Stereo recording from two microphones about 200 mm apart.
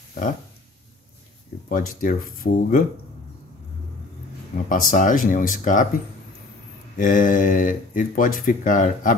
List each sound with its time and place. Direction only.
1.7 s speech: 45° left (ahead or behind)
4.6 s speech: 45° left (ahead or behind)
7.0 s speech: 40° left (ahead or behind)